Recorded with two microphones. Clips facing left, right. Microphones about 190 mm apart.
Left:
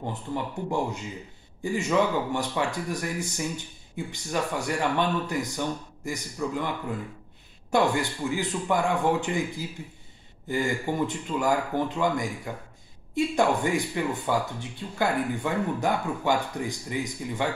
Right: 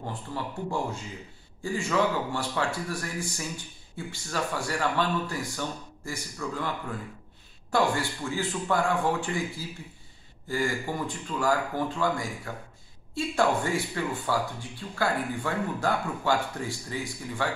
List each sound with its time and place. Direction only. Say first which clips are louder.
0.0 s speech: left 3 dB; 20° left (ahead or behind)
7.7 s speech: left 2 dB; 20° left (ahead or behind)